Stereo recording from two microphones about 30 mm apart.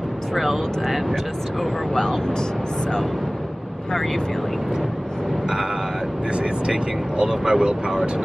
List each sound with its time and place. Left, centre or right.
0.3 s speech: centre
2.0 s speech: left
6.3 s speech: right
6.7 s speech: right